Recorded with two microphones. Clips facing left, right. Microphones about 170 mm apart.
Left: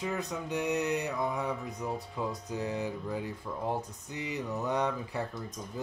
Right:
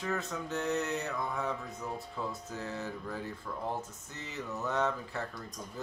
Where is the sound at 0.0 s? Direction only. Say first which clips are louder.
Left 1 dB; 15° left (ahead or behind).